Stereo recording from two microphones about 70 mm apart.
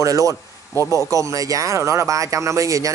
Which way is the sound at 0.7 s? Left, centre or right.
Left.